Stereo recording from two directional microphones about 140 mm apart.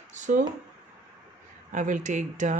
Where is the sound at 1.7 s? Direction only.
65° right (ahead or behind).